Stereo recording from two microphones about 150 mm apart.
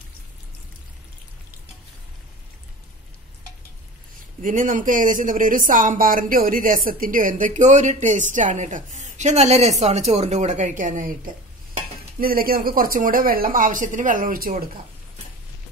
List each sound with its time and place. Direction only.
4.4 s speech: 60° right (ahead or behind)
12.2 s speech: 80° right; by 14.6 s 65° right (ahead or behind)